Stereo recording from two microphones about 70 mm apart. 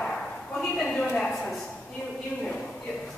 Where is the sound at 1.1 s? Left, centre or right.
Centre.